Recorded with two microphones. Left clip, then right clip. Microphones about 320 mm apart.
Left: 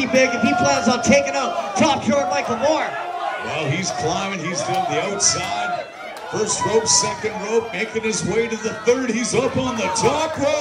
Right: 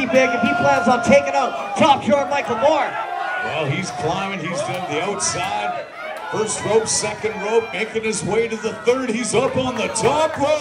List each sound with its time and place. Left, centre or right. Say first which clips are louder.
0.0 s a man's voice: right 1 dB; right
6.3 s a man's voice: even; right
8.3 s a man's voice: right 1 dB; right